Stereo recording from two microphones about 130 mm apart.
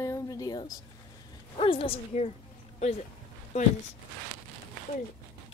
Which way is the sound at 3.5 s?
55° left (ahead or behind).